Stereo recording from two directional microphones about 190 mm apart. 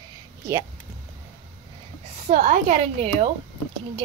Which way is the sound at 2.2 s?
40° right (ahead or behind).